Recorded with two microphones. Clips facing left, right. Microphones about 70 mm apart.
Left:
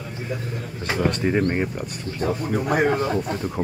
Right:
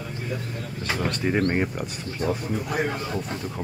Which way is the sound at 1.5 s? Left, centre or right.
Centre.